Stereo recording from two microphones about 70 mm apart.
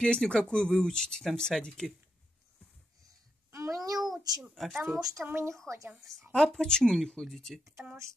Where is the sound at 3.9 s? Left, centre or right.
Centre.